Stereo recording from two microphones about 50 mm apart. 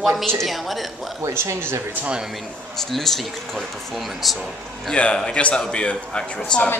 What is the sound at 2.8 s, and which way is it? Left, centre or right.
A woman's voice, centre.